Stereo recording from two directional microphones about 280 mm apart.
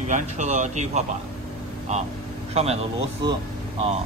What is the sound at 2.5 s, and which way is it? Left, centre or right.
Speech, right.